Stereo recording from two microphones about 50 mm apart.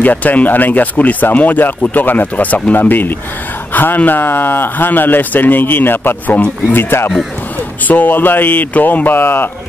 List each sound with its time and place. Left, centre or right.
0.0 s speech: left
7.8 s speech: left